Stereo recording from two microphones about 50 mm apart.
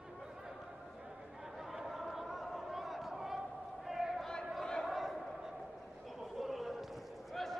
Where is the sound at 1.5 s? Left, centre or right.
Centre.